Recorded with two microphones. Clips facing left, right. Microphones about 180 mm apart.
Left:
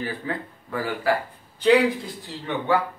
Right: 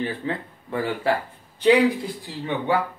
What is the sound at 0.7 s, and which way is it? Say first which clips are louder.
Speech: right 1 dB; 25° right (ahead or behind).